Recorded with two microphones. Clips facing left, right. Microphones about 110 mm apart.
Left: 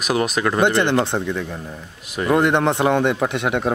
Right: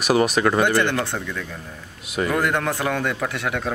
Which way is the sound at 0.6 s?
20° left (ahead or behind).